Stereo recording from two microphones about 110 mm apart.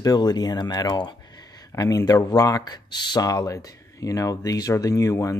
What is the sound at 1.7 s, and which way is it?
Speech, 30° left (ahead or behind).